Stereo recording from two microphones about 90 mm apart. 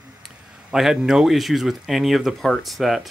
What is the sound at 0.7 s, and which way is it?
Speech, 5° right (ahead or behind).